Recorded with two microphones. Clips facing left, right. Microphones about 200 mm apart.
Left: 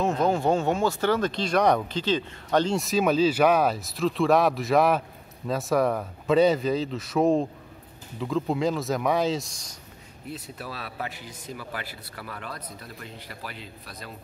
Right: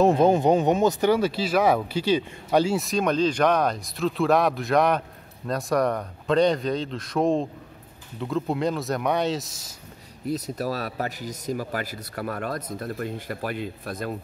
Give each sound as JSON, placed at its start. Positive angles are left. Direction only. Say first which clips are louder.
{"t": 0.2, "sound": "speech", "louder": "right 4 dB", "side_deg": -20}
{"t": 10.2, "sound": "speech", "louder": "right 10 dB", "side_deg": -40}